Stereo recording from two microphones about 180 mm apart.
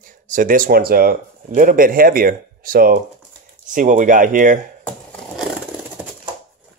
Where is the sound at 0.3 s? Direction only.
50° right (ahead or behind).